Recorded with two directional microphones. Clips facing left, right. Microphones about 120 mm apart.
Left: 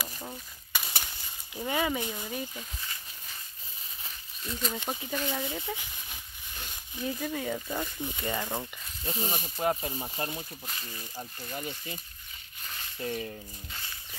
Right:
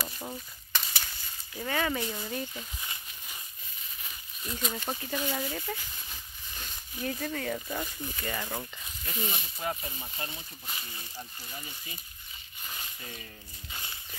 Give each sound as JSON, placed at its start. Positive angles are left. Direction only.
{"t": 0.7, "sound": "a sound", "side_deg": 10}
{"t": 1.5, "sound": "speech", "side_deg": 15}
{"t": 4.4, "sound": "speech", "side_deg": -5}
{"t": 4.8, "sound": "speech", "side_deg": 5}
{"t": 5.7, "sound": "speech", "side_deg": 10}
{"t": 8.0, "sound": "speech", "side_deg": 20}
{"t": 11.5, "sound": "speech", "side_deg": 50}
{"t": 13.0, "sound": "speech", "side_deg": 50}
{"t": 13.7, "sound": "speech", "side_deg": -15}